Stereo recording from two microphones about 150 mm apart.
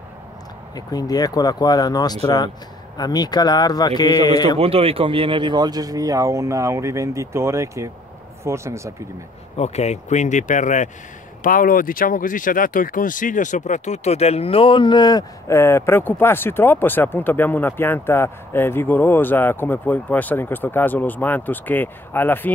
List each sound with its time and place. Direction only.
0.7 s speech: 25° left (ahead or behind)
4.6 s speech: 40° right (ahead or behind); by 8.9 s 20° right (ahead or behind)
9.6 s speech: 45° left (ahead or behind)
11.4 s speech: 65° left (ahead or behind); by 22.5 s 15° left (ahead or behind)